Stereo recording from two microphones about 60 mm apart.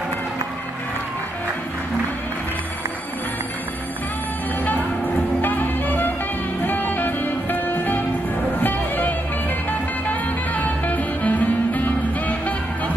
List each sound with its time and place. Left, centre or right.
4.6 s music: left